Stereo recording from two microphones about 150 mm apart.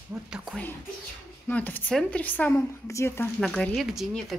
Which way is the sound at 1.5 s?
10° left (ahead or behind).